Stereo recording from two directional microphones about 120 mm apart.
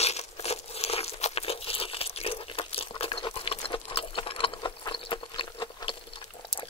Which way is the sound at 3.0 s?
50° left (ahead or behind).